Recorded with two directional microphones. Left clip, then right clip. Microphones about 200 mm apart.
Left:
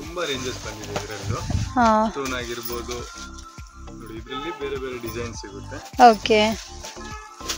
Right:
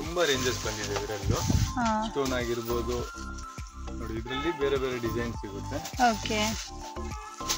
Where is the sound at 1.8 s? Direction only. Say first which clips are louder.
Left 12 dB; 20° left (ahead or behind).